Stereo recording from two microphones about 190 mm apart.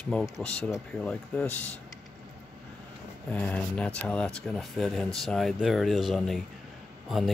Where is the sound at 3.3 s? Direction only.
5° left (ahead or behind).